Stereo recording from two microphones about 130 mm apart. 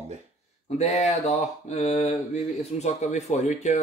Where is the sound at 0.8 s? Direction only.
60° left (ahead or behind).